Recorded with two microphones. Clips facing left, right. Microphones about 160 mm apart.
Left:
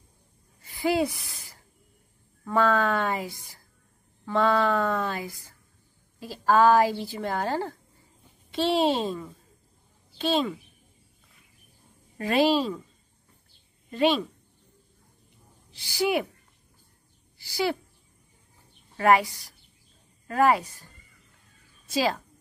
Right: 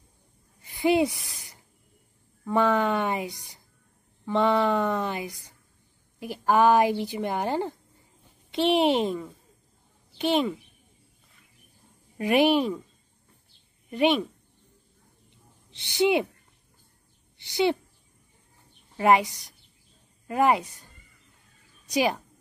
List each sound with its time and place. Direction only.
0.6 s a sound: 20° right (ahead or behind)
2.4 s a child's voice: 20° right (ahead or behind)
12.2 s a woman's voice: 15° right (ahead or behind)
13.8 s speech: 15° right (ahead or behind)
15.7 s speech: 20° right (ahead or behind)
17.4 s a child's voice: 20° right (ahead or behind)
18.9 s speech: 20° right (ahead or behind)
21.8 s speech: 20° right (ahead or behind)